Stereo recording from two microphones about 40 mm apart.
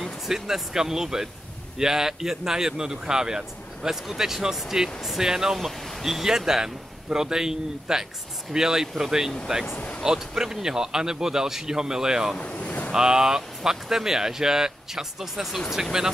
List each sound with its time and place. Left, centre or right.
0.3 s speech: centre
5.7 s a sound: centre
6.0 s speech: centre
9.8 s speech: left
10.0 s speech: centre
12.4 s boat: left
12.9 s speech: centre